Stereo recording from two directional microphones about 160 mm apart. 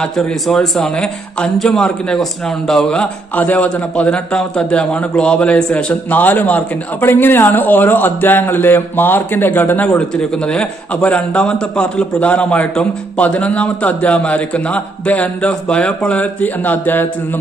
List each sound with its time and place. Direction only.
0.0 s a man's voice: 5° left (ahead or behind)